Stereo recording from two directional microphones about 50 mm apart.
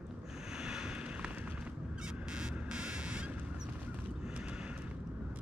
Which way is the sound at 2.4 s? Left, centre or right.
Centre.